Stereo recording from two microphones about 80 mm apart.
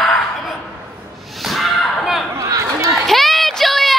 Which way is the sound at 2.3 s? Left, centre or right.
Right.